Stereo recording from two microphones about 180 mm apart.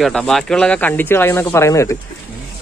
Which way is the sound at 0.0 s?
Centre (ahead or behind).